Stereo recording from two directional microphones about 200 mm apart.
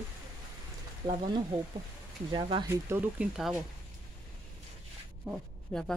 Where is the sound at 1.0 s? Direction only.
20° right (ahead or behind); by 3.6 s 5° right (ahead or behind).